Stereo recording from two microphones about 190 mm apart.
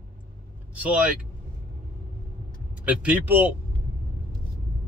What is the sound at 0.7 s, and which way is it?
Speech, 5° right (ahead or behind).